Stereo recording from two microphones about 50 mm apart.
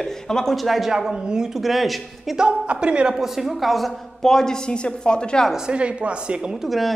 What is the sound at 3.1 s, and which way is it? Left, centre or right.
A woman's voice, centre.